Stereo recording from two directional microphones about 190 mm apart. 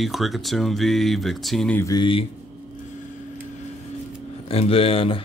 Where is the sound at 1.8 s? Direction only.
20° left (ahead or behind).